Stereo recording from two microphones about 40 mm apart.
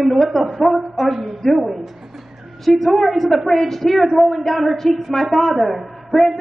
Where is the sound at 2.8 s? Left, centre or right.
Centre.